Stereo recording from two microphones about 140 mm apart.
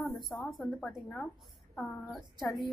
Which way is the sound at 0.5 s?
Centre (ahead or behind).